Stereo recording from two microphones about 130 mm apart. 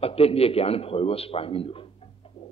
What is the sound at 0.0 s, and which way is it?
A man's voice, 50° left (ahead or behind).